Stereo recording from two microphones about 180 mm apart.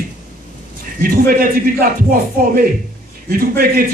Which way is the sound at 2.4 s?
50° right (ahead or behind).